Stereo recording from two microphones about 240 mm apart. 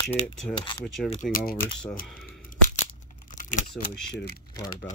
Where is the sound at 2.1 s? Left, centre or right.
Left.